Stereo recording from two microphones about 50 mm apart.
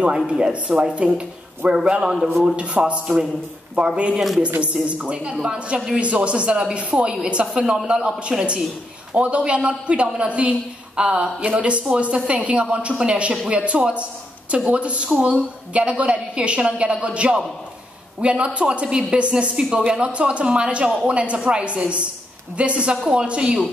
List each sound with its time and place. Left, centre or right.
0.3 s a woman's voice: centre